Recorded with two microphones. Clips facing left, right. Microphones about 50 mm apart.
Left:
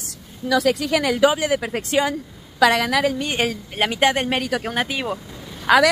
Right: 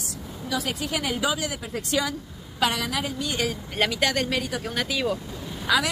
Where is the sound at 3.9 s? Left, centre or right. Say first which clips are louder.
Left 6 dB; left.